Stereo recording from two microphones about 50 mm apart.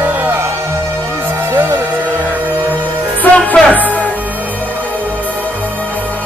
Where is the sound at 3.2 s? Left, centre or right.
Left.